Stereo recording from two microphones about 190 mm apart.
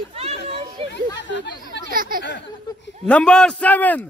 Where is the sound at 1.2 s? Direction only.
70° left (ahead or behind).